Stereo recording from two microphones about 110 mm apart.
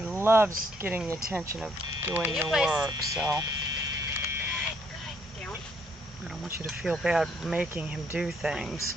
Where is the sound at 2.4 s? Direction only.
5° right (ahead or behind).